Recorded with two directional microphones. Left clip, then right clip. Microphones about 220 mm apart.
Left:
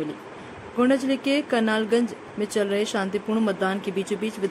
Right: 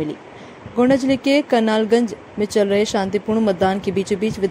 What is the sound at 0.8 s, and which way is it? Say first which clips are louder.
Speech: right 6 dB; 15° right (ahead or behind).